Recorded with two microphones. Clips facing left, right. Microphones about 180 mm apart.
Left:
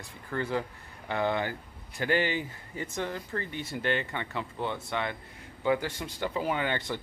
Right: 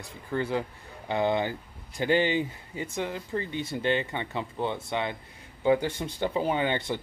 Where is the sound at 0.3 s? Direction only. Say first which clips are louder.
Right 2 dB; 15° right (ahead or behind).